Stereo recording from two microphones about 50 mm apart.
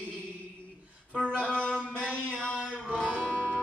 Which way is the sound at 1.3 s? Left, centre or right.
Left.